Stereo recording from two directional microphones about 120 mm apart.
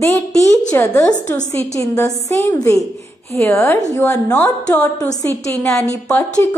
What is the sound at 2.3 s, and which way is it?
A woman's voice, 25° left (ahead or behind).